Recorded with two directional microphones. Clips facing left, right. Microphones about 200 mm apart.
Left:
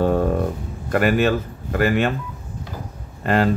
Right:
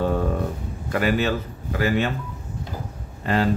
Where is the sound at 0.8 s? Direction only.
55° left (ahead or behind).